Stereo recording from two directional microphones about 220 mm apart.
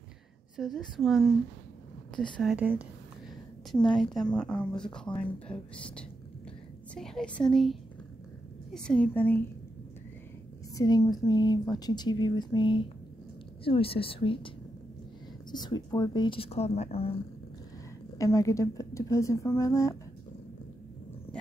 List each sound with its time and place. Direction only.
0.6 s a woman's voice: centre (ahead or behind)
2.3 s a woman's voice: 5° right (ahead or behind)
8.7 s a woman's voice: 5° left (ahead or behind)
10.7 s speech: 15° left (ahead or behind)
15.5 s speech: 20° left (ahead or behind)
18.1 s a woman's voice: 15° left (ahead or behind)